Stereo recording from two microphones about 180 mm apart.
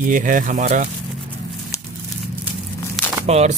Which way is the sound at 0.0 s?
45° right (ahead or behind).